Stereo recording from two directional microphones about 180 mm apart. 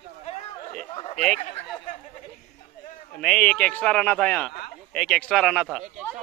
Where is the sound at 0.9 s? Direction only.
30° left (ahead or behind).